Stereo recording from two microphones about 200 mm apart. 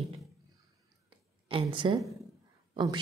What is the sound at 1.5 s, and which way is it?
Speech, 25° right (ahead or behind).